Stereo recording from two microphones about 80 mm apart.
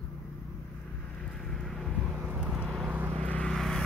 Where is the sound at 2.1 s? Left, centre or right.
Centre.